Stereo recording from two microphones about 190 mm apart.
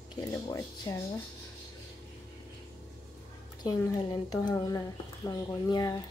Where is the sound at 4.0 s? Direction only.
20° left (ahead or behind).